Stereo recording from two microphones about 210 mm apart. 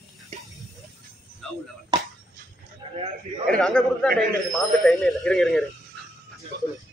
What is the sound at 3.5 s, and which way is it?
Speech, 5° left (ahead or behind).